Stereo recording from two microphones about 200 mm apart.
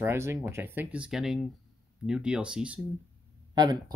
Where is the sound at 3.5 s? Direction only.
20° right (ahead or behind).